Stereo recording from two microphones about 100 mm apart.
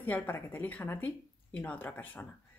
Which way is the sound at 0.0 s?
20° left (ahead or behind).